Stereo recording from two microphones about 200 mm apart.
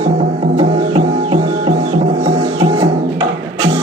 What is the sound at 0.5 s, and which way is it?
Music, 25° right (ahead or behind).